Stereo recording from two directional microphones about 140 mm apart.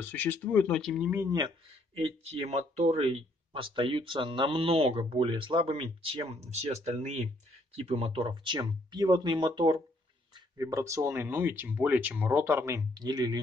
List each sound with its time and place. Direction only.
0.0 s speech: 15° left (ahead or behind)
2.0 s speech: 45° right (ahead or behind); by 13.4 s 30° right (ahead or behind)